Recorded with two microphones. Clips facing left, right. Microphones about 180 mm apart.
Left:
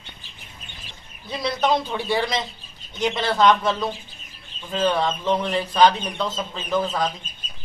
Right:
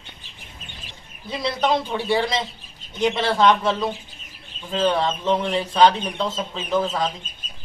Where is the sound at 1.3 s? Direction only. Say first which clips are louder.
Even; centre (ahead or behind).